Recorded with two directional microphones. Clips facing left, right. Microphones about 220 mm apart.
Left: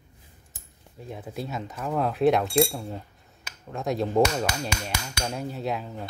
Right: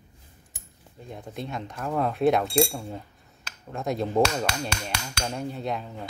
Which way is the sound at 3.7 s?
Centre (ahead or behind).